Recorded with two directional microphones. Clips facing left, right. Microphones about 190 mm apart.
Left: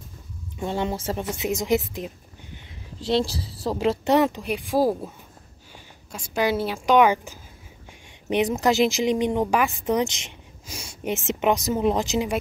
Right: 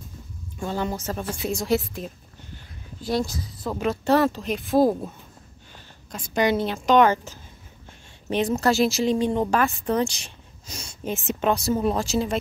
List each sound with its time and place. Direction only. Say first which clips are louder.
0.6 s a woman's voice: left 1 dB; 25° left (ahead or behind)
3.1 s speech: left 2 dB; 30° left (ahead or behind); by 5.1 s 10° left (ahead or behind)
6.1 s speech: right 1 dB; 5° left (ahead or behind)